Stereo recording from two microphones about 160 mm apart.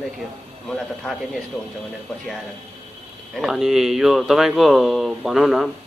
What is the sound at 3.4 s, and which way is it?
Speech, centre (ahead or behind).